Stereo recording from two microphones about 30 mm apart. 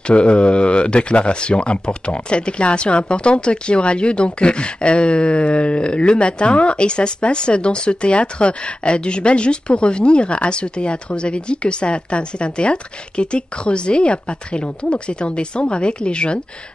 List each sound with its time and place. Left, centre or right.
0.1 s speech: left